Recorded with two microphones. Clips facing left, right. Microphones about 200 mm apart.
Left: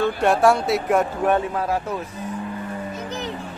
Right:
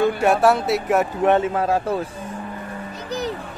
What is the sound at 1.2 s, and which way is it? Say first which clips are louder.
Speech: right 3 dB; 25° right (ahead or behind).